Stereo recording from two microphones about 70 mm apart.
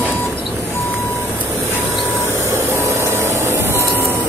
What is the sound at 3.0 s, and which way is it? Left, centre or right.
Printer, right.